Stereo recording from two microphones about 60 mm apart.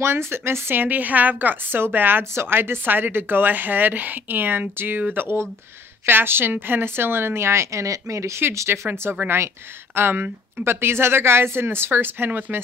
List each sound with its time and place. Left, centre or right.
0.0 s a woman's voice: right
8.5 s a woman's voice: right